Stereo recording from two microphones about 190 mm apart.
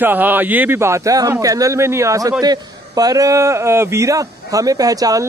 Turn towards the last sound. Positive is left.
turn(degrees=-20)  # may be behind; listen again after turning